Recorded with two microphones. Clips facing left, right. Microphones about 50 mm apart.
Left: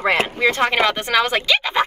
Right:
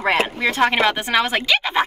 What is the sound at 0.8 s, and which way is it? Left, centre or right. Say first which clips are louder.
Speech: left 1 dB; centre.